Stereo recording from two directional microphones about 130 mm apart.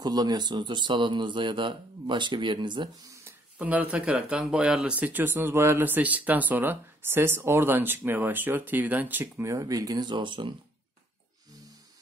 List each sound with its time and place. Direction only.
0.0 s speech: 30° right (ahead or behind)
3.5 s speech: 10° right (ahead or behind); by 10.5 s 40° right (ahead or behind)